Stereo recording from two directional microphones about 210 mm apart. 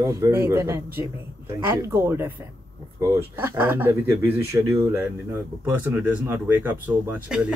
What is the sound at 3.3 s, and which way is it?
Speech, 10° right (ahead or behind).